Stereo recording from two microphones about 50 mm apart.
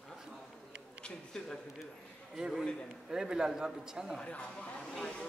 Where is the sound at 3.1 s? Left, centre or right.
Centre.